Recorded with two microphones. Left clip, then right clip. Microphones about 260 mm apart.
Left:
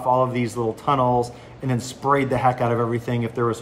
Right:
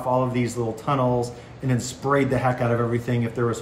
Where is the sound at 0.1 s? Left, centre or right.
Centre.